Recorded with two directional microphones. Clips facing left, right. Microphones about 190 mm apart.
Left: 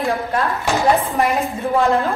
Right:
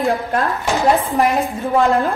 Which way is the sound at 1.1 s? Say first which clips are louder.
Right 2 dB; 15° right (ahead or behind).